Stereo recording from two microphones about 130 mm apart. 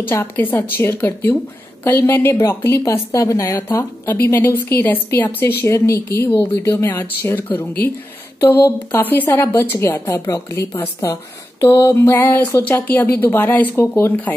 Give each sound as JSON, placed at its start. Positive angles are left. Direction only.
{"t": 0.0, "sound": "a woman's voice", "side_deg": 15}